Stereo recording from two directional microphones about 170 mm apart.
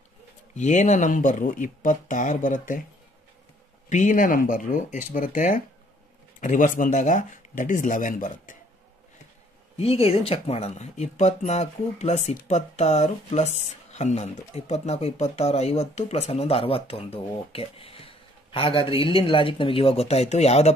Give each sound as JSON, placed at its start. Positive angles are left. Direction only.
{"t": 0.6, "sound": "speech", "side_deg": 45}
{"t": 3.9, "sound": "speech", "side_deg": 50}
{"t": 9.8, "sound": "speech", "side_deg": 35}